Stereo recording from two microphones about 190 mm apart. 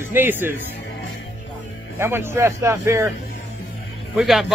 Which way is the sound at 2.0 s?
10° right (ahead or behind).